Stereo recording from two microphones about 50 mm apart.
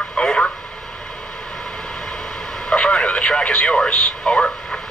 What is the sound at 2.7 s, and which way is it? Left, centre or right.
Radio, left.